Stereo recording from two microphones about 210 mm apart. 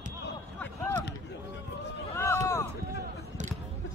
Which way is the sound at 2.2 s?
15° left (ahead or behind).